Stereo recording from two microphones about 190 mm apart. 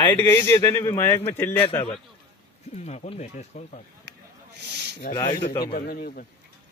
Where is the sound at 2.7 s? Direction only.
35° left (ahead or behind).